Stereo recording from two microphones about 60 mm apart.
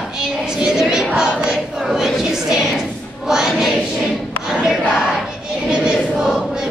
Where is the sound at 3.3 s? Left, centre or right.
Centre.